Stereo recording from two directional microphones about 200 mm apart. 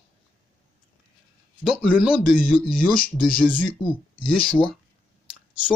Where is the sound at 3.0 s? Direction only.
45° left (ahead or behind).